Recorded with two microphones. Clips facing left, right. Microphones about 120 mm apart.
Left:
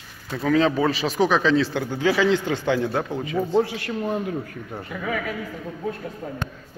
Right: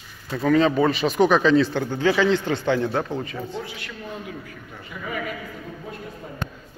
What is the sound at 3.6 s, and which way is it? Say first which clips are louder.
Speech: left 9 dB; 50° left (ahead or behind).